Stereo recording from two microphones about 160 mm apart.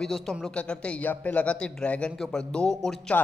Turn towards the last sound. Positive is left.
turn(degrees=5)  # may be behind; listen again after turning